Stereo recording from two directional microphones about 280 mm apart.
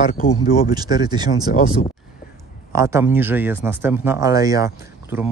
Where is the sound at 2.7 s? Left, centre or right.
Centre.